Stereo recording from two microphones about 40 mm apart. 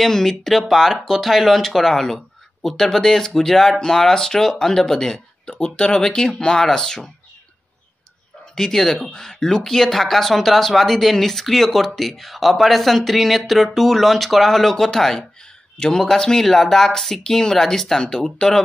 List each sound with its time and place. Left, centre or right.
0.0 s speech: centre
1.2 s speech: centre
8.5 s speech: centre